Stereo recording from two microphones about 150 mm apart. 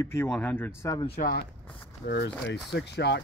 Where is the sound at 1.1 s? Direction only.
90° left.